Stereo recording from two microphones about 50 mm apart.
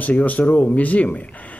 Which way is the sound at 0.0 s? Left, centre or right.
Left.